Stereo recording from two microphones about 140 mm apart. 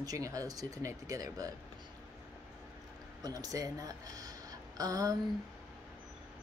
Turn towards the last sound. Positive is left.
turn(degrees=-25)  # may be behind; listen again after turning